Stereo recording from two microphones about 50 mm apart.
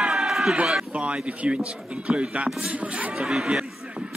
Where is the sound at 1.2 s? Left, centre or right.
Right.